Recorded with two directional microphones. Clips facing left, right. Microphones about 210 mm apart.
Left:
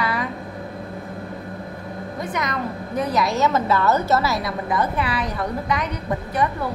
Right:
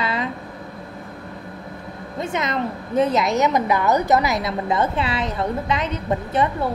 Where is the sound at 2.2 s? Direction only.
25° right (ahead or behind).